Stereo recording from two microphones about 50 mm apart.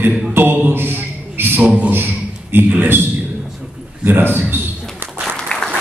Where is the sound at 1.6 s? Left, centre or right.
Right.